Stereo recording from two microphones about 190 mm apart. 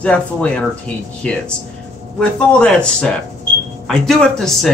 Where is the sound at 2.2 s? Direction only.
5° left (ahead or behind).